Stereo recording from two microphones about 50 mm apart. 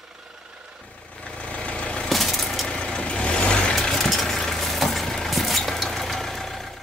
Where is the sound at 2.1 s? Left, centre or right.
Centre.